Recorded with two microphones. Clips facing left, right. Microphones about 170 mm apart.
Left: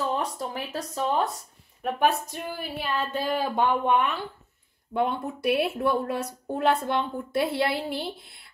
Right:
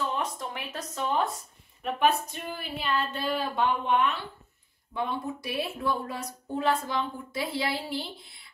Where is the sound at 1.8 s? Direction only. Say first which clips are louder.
Left 1 dB; 45° left (ahead or behind).